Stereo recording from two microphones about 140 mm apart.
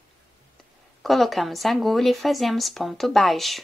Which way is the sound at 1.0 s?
Centre (ahead or behind).